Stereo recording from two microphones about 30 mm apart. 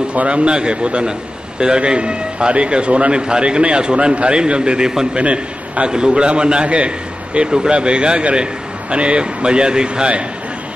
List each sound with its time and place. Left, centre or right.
0.3 s a man's voice: right
5.1 s a man's voice: right
5.9 s speech: right
7.7 s speech: right